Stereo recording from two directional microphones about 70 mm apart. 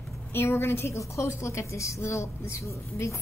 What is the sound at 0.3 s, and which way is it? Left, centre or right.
A woman's voice, left.